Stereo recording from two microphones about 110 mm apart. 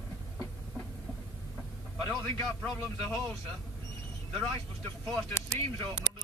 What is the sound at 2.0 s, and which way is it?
A man's voice, 20° left (ahead or behind).